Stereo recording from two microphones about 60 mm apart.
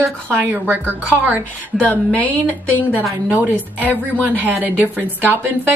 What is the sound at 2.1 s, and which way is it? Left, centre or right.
Speech, left.